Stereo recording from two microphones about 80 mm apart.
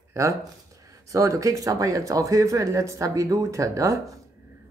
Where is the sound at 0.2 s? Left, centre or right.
Right.